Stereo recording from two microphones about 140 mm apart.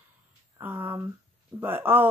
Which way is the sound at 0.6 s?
15° right (ahead or behind).